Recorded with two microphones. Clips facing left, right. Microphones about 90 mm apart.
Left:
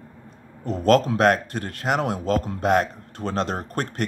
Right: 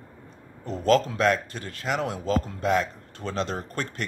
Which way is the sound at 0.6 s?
60° left (ahead or behind).